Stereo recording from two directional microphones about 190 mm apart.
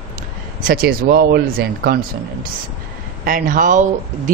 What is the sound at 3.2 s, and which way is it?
Speech, 45° right (ahead or behind).